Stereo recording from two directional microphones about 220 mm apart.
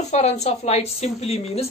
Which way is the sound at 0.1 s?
30° left (ahead or behind).